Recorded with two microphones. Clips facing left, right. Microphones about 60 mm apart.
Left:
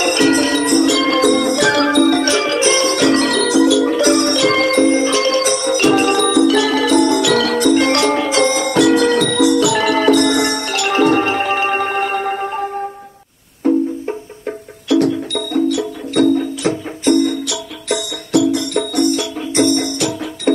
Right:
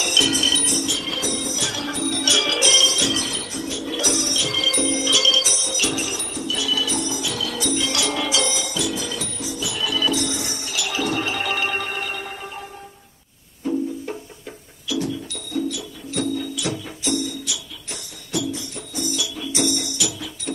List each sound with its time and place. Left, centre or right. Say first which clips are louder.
0.0 s music: left 9 dB; left
2.1 s music: left 8 dB; left
3.9 s music: left 12 dB; left
13.6 s music: left 10 dB; left
14.9 s music: left 11 dB; left
16.3 s music: left 9 dB; left